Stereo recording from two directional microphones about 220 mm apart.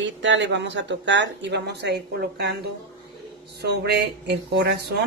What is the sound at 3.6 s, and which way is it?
Speech, 50° right (ahead or behind).